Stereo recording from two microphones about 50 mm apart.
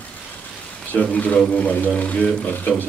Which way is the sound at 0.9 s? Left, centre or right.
Left.